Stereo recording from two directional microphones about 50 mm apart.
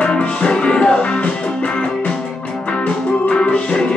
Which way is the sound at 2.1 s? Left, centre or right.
Centre.